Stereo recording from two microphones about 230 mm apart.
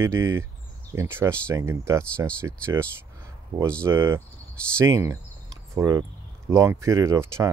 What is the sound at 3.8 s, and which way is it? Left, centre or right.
Speech, centre.